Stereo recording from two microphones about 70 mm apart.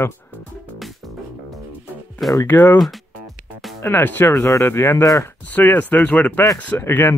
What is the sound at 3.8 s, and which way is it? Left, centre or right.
Speech, left.